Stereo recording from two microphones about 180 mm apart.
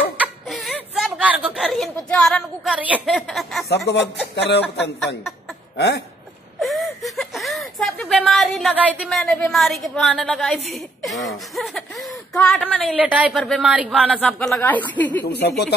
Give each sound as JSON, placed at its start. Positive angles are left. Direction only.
{"t": 0.2, "sound": "a sound", "side_deg": 0}
{"t": 2.1, "sound": "a woman's voice", "side_deg": 5}
{"t": 3.6, "sound": "speech", "side_deg": 70}
{"t": 6.6, "sound": "a woman's voice", "side_deg": 0}
{"t": 12.9, "sound": "a woman's voice", "side_deg": -5}
{"t": 15.2, "sound": "speech", "side_deg": 65}